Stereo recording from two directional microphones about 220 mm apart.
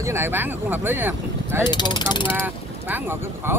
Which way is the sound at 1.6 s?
20° left (ahead or behind).